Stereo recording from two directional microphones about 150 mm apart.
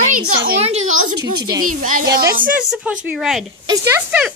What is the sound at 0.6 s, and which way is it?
Speech, 45° right (ahead or behind).